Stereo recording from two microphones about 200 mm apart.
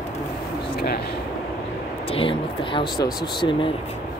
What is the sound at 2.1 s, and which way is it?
Speech, 25° left (ahead or behind).